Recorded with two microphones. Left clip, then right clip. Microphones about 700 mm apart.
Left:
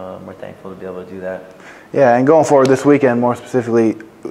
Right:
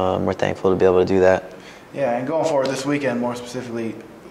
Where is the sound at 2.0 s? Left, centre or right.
Left.